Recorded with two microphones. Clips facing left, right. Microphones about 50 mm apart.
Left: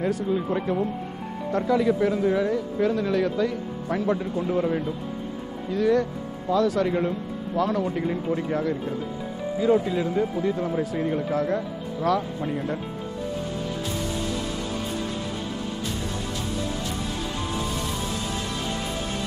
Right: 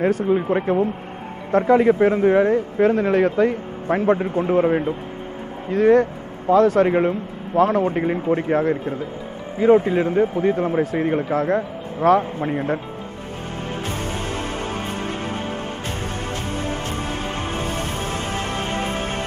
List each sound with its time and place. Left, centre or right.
0.0 s a man's voice: right
13.8 s music: right
16.4 s music: right